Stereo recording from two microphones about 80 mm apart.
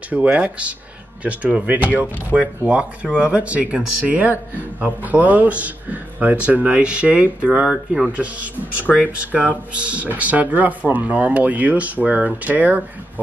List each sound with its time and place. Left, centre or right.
0.1 s speech: centre
9.2 s speech: centre